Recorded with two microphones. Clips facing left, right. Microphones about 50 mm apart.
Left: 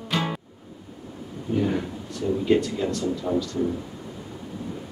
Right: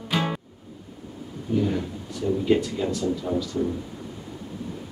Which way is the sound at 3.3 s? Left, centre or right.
Centre.